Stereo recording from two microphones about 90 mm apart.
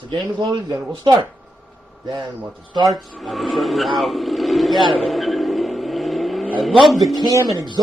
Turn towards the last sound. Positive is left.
turn(degrees=-35)  # may be behind; listen again after turning